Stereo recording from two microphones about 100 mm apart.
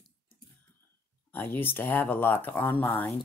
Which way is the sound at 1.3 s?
20° left (ahead or behind).